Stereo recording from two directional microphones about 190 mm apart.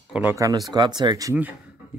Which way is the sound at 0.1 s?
10° right (ahead or behind).